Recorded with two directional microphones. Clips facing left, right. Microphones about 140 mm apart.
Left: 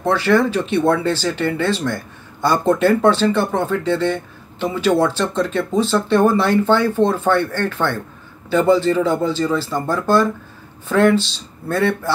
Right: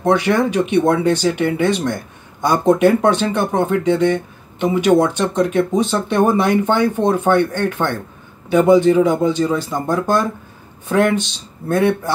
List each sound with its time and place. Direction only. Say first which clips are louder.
0.0 s speech: right 1 dB; 15° right (ahead or behind)